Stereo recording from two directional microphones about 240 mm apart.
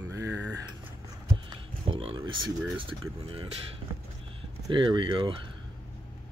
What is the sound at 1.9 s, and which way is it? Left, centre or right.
Speech, right.